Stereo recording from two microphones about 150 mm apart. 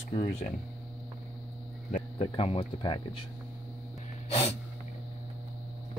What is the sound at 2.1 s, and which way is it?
Speech, 40° left (ahead or behind).